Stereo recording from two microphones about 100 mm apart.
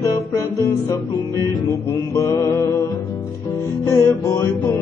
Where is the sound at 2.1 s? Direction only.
30° left (ahead or behind).